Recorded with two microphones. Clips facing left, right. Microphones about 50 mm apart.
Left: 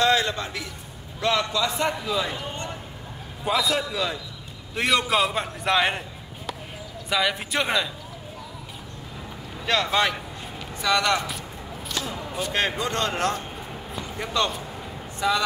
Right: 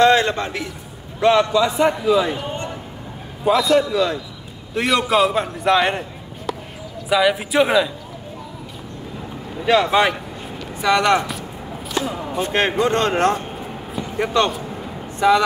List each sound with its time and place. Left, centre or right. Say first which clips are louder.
0.0 s a man's voice: right 7 dB; right
1.2 s a man's voice: right 9 dB; right
1.8 s a man's voice: right 9 dB; centre
3.4 s a man's voice: right 8 dB; centre
9.7 s a man's voice: right 7 dB; centre; by 15.4 s right